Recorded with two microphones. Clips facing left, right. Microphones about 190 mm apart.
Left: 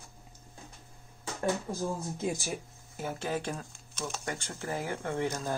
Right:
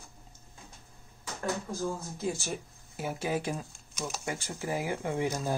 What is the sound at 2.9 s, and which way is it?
Speech, 10° right (ahead or behind).